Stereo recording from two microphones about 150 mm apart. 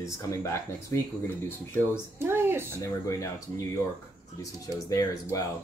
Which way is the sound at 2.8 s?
20° left (ahead or behind).